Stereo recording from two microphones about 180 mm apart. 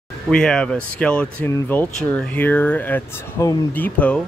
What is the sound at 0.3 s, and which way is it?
Speech, 5° left (ahead or behind).